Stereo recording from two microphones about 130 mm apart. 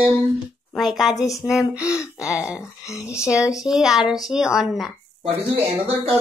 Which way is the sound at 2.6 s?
25° left (ahead or behind).